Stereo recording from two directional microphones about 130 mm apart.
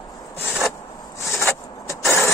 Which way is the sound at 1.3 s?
20° left (ahead or behind).